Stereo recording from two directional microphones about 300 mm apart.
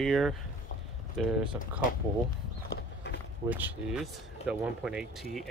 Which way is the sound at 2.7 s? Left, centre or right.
Left.